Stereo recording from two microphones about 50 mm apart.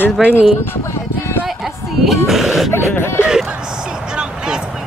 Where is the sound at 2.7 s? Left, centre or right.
Left.